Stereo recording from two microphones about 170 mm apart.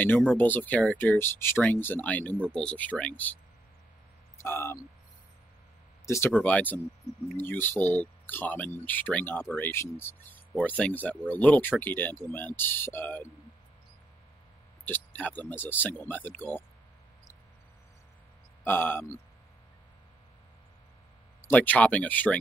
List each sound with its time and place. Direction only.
0.3 s speech: 10° left (ahead or behind)
4.4 s speech: 15° left (ahead or behind)
6.0 s speech: 15° left (ahead or behind)
14.9 s speech: 10° left (ahead or behind)
18.6 s speech: 10° left (ahead or behind)
21.5 s speech: 10° left (ahead or behind)